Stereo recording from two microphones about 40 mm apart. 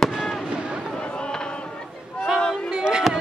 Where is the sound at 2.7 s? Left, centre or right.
Right.